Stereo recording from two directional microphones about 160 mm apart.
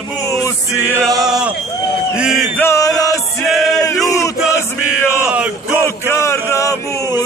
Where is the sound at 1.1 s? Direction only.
25° right (ahead or behind).